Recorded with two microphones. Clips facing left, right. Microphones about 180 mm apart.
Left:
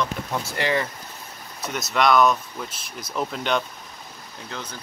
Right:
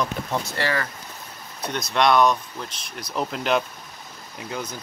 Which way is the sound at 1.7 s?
5° left (ahead or behind).